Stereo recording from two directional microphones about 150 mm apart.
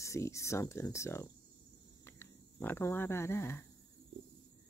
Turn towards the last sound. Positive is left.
turn(degrees=15)  # may be behind; listen again after turning